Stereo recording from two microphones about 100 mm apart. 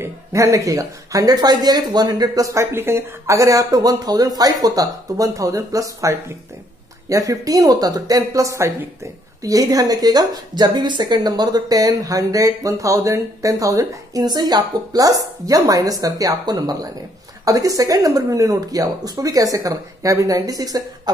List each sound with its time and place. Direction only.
0.0 s a woman's voice: 30° right (ahead or behind)